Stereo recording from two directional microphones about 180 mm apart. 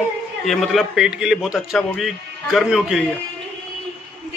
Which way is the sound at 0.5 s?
Centre (ahead or behind).